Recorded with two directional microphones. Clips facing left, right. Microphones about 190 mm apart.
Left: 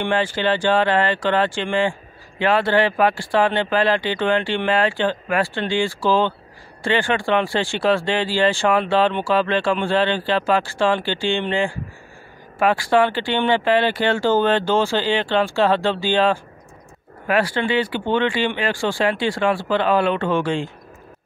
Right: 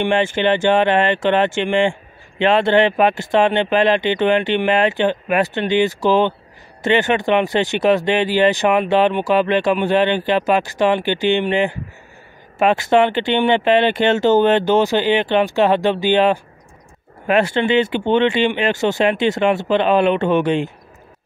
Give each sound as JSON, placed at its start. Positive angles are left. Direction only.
{"t": 0.0, "sound": "speech", "side_deg": -20}